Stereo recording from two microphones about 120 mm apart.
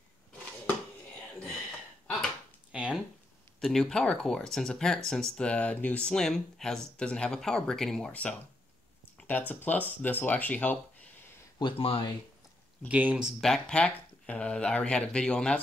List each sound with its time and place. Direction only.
2.7 s a sound: 10° right (ahead or behind)
3.6 s speech: 5° left (ahead or behind)
11.6 s speech: 50° left (ahead or behind)
12.8 s speech: 10° right (ahead or behind)
13.4 s speech: 5° left (ahead or behind)